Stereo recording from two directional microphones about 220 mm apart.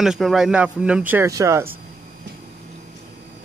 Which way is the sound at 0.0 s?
Centre (ahead or behind).